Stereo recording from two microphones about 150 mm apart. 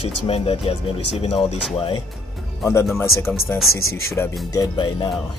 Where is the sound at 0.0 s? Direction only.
40° left (ahead or behind).